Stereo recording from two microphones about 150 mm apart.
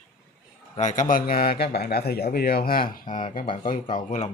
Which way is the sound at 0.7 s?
55° left (ahead or behind).